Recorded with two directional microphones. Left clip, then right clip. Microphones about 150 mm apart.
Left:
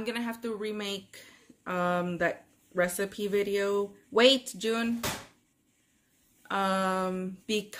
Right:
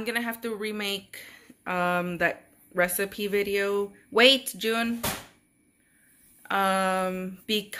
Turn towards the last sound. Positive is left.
turn(degrees=10)  # may be behind; listen again after turning